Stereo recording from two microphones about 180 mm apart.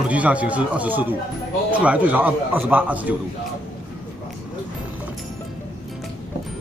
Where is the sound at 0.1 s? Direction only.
10° right (ahead or behind).